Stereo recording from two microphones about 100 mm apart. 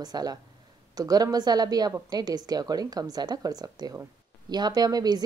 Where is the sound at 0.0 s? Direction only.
40° right (ahead or behind).